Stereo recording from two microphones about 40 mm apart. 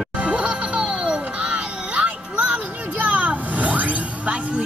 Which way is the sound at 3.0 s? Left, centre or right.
Right.